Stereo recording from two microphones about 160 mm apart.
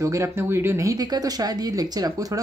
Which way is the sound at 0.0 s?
20° right (ahead or behind).